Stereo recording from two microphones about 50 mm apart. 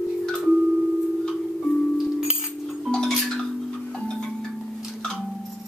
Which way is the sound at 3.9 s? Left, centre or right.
Left.